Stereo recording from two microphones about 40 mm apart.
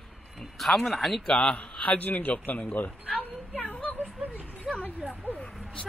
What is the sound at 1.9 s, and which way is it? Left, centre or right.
A man's voice, left.